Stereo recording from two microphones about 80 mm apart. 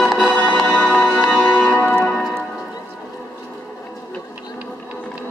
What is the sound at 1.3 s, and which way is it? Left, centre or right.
Church bell, centre.